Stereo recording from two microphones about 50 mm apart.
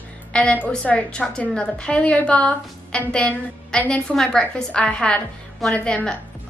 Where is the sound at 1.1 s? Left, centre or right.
Centre.